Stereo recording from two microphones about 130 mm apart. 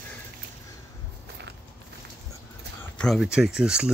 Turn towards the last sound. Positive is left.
turn(degrees=-5)  # may be behind; listen again after turning